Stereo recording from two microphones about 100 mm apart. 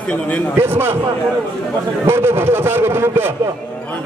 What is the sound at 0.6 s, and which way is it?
Speech, 25° right (ahead or behind).